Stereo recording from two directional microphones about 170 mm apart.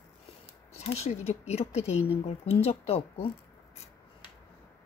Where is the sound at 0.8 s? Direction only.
40° left (ahead or behind).